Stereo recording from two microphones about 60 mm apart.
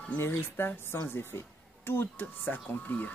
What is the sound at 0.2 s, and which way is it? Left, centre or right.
Speech, left.